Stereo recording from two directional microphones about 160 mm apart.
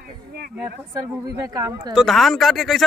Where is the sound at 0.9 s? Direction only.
20° right (ahead or behind).